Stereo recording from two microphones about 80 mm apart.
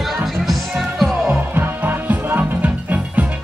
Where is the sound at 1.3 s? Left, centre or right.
Right.